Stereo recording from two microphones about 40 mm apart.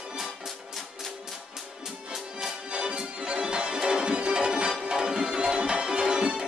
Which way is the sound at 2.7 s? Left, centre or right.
Right.